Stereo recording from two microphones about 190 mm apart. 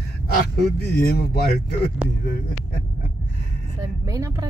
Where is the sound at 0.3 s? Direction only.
55° left (ahead or behind).